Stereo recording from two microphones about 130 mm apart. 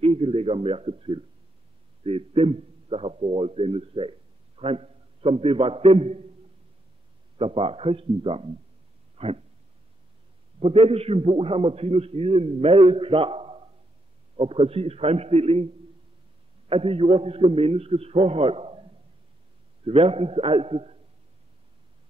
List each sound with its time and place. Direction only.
0.0 s a man's voice: 50° right (ahead or behind)
7.3 s a man's voice: 45° right (ahead or behind)
9.1 s a sound: 50° right (ahead or behind)
10.6 s a man's voice: 50° right (ahead or behind)